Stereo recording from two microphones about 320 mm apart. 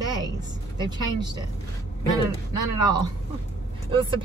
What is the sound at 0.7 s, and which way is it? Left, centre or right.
Speech, centre.